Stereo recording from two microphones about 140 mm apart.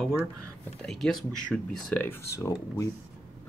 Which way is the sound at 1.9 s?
15° left (ahead or behind).